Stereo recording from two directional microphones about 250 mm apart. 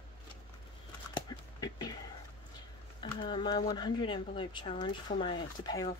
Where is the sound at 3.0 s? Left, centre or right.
Centre.